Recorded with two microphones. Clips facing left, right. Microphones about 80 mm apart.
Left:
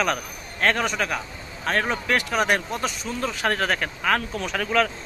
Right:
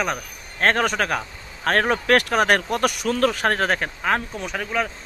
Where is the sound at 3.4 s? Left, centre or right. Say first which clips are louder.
Right 2 dB; right; by 4.9 s centre.